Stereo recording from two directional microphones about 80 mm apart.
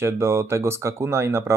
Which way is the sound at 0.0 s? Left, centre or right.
Right.